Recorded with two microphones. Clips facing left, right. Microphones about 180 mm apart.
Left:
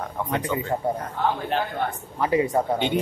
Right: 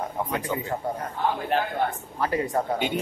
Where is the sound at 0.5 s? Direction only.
10° right (ahead or behind).